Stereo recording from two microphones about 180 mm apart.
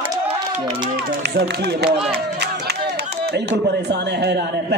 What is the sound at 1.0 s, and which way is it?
Speech, 60° right (ahead or behind).